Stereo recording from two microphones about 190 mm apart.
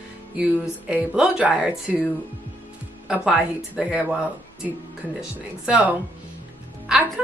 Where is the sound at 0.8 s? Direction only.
5° right (ahead or behind).